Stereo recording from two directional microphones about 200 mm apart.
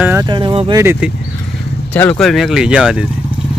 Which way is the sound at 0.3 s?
25° right (ahead or behind).